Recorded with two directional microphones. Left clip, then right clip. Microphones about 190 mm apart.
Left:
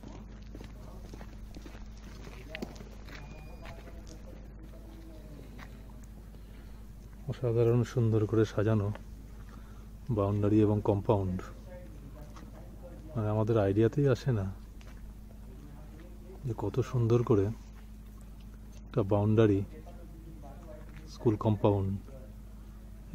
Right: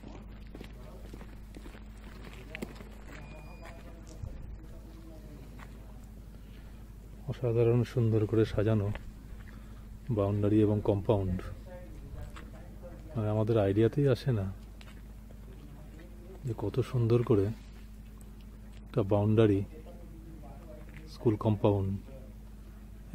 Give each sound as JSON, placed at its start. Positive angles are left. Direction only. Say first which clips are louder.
{"t": 2.5, "sound": "walk", "louder": "left 1 dB", "side_deg": 5}
{"t": 3.1, "sound": "horse", "louder": "left 1 dB", "side_deg": 0}
{"t": 7.2, "sound": "speech", "louder": "even", "side_deg": 0}
{"t": 10.1, "sound": "speech", "louder": "even", "side_deg": 0}
{"t": 13.1, "sound": "speech", "louder": "even", "side_deg": 0}
{"t": 16.4, "sound": "speech", "louder": "even", "side_deg": 0}
{"t": 18.9, "sound": "speech", "louder": "even", "side_deg": 0}
{"t": 21.1, "sound": "speech", "louder": "even", "side_deg": 0}